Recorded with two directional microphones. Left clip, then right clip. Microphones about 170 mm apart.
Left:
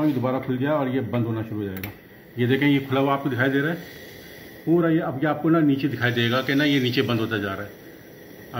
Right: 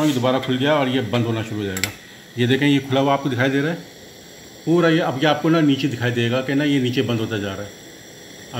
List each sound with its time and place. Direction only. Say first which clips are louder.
0.0 s speech: right 5 dB; 30° right (ahead or behind)